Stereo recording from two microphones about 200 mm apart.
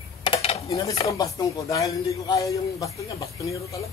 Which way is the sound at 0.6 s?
15° left (ahead or behind).